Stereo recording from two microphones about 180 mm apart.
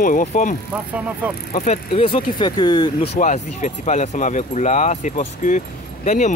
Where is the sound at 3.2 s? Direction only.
40° left (ahead or behind).